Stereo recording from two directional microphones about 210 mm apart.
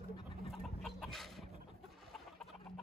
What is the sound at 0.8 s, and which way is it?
Chicken, centre (ahead or behind).